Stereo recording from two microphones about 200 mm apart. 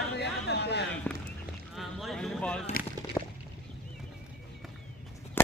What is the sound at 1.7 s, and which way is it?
Music, centre (ahead or behind).